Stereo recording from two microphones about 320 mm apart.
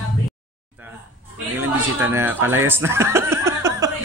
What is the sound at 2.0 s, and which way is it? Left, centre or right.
Speech, centre.